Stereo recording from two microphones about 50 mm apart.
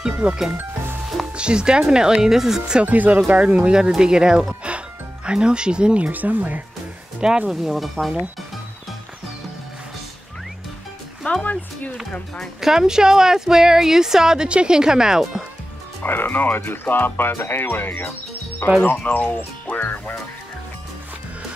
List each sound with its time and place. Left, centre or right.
0.2 s speech: centre
2.8 s speech: right
6.1 s speech: right
7.2 s speech: centre
11.3 s music: left
12.5 s speech: centre
16.0 s speech: left